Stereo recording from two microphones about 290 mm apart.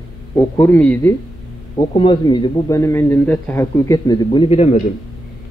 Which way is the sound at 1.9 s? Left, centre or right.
Centre.